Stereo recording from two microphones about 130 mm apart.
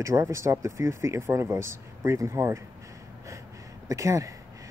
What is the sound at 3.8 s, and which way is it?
Speech, 25° right (ahead or behind).